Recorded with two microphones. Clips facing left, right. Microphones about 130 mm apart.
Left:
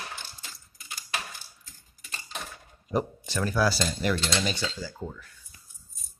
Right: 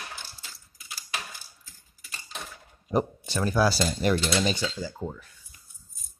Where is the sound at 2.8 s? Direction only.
20° right (ahead or behind).